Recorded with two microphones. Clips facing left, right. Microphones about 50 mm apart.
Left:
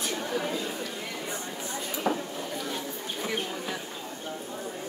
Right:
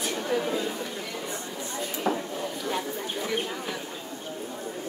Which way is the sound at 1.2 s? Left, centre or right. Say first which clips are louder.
Even; centre.